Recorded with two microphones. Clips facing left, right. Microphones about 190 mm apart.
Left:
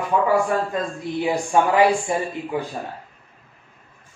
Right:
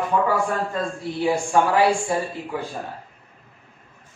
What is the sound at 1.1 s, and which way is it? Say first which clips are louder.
Speech: even; 20° left (ahead or behind).